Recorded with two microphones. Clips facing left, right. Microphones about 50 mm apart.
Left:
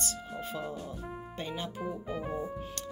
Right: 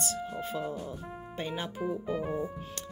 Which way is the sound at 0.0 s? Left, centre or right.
Centre.